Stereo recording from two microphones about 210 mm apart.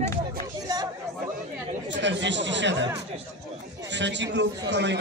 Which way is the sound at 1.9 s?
60° right (ahead or behind).